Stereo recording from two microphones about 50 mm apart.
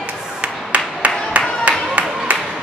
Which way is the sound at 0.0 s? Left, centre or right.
Right.